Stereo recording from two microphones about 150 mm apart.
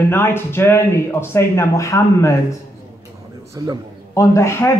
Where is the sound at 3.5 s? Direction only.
20° right (ahead or behind).